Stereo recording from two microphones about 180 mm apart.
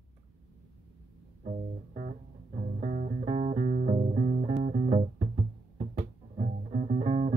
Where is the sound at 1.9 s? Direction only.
45° right (ahead or behind).